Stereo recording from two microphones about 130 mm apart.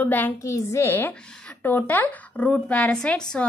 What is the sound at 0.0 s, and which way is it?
Speech, 15° left (ahead or behind).